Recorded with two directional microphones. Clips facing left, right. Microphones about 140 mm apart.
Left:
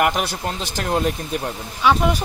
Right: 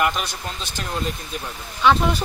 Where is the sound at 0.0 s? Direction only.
65° left (ahead or behind).